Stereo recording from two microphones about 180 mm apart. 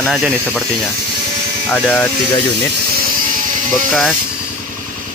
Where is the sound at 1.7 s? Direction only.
5° left (ahead or behind).